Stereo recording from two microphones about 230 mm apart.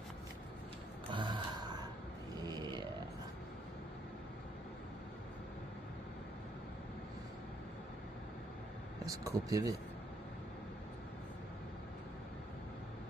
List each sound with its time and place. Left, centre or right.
1.1 s gasp: centre
2.4 s burping: centre
9.0 s speech: centre